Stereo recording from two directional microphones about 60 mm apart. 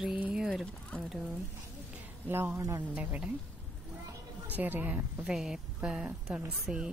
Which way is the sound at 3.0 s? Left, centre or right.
Right.